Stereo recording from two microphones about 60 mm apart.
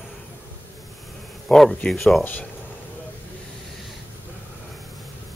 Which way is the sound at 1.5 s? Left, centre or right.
Centre.